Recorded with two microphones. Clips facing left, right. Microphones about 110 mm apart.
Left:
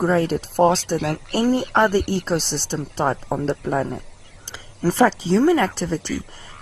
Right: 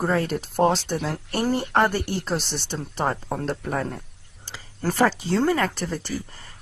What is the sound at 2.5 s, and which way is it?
Speech, 30° left (ahead or behind).